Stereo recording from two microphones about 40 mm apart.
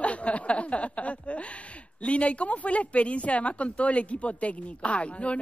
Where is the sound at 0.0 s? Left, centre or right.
Left.